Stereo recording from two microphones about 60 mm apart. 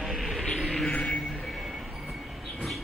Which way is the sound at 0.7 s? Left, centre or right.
Centre.